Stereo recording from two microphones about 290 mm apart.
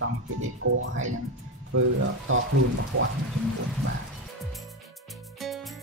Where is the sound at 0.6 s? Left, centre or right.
Right.